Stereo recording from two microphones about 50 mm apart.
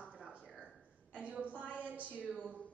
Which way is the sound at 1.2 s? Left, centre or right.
Right.